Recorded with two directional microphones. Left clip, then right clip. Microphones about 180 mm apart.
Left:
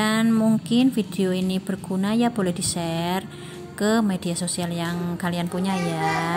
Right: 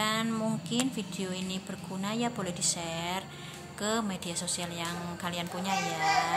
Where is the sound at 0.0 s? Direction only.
40° left (ahead or behind).